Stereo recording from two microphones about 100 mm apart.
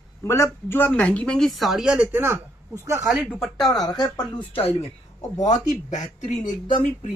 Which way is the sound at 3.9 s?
45° left (ahead or behind).